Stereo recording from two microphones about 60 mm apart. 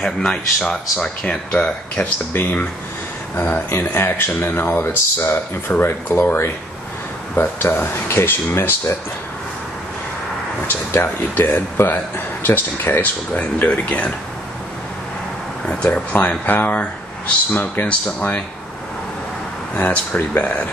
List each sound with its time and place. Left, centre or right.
0.0 s speech: centre
2.3 s speech: left
7.7 s speech: left
10.9 s speech: left; by 14.1 s centre
15.6 s speech: left
19.7 s speech: left